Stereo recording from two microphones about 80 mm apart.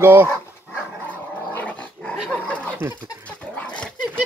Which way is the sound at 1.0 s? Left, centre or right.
Left.